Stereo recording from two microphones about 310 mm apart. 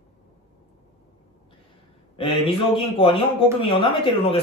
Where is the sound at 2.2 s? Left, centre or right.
Centre.